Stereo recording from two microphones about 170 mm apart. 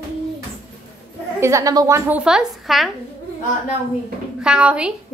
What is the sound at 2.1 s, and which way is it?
Speech, 5° right (ahead or behind).